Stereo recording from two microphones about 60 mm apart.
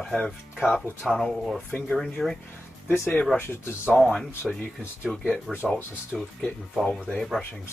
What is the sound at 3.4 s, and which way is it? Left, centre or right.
Speech, left.